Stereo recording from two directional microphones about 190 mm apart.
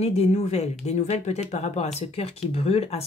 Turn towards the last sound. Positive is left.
turn(degrees=30)  # may be behind; listen again after turning